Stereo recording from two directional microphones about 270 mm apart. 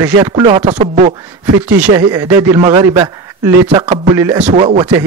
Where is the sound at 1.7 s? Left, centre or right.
Centre.